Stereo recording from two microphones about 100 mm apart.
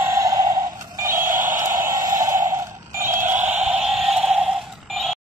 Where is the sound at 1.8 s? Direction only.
30° right (ahead or behind); by 5.1 s 5° right (ahead or behind).